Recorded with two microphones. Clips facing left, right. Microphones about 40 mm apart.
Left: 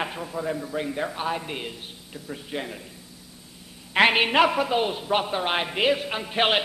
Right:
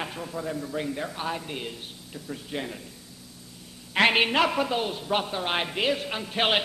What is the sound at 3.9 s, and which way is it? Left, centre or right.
Speech, centre.